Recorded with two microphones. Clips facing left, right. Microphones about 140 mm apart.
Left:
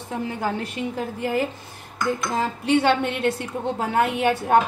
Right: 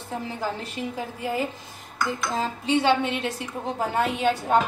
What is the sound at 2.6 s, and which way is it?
A woman's voice, 60° left (ahead or behind).